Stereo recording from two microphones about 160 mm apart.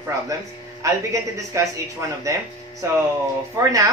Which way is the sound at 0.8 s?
20° right (ahead or behind).